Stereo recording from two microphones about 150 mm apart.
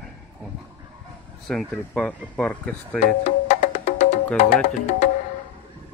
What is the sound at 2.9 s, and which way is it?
Music, 50° left (ahead or behind).